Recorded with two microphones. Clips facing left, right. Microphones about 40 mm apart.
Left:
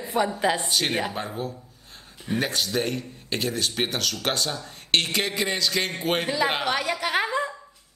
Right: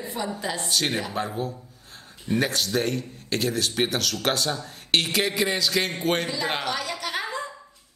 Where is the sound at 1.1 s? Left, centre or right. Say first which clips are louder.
Right 2 dB; centre.